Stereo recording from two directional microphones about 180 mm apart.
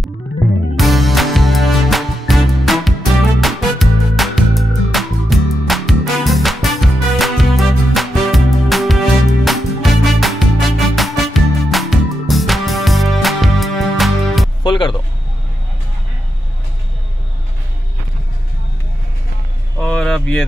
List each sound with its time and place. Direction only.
0.7 s music: centre (ahead or behind)
14.6 s music: 25° left (ahead or behind)
19.8 s vehicle: 5° left (ahead or behind)